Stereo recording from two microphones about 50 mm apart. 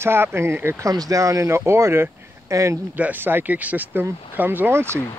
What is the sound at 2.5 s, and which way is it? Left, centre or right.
Speech, right.